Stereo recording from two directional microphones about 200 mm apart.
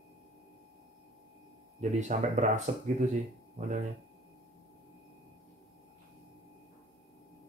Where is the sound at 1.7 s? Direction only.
35° right (ahead or behind).